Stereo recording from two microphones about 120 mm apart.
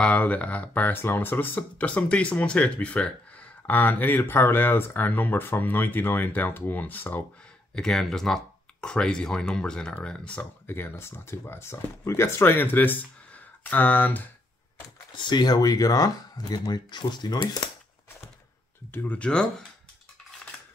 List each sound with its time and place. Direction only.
0.0 s speech: 10° left (ahead or behind)
7.7 s speech: 5° left (ahead or behind)
15.1 s speech: 40° left (ahead or behind)
18.9 s speech: 10° left (ahead or behind)